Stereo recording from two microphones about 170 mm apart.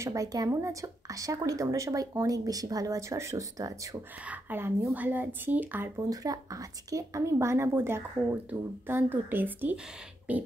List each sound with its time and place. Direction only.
0.0 s a woman's voice: 20° right (ahead or behind)